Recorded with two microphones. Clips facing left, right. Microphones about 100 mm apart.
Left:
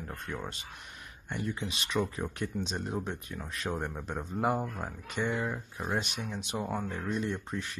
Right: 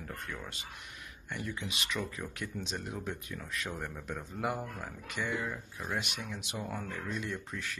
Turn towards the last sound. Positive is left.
turn(degrees=30)  # may be behind; listen again after turning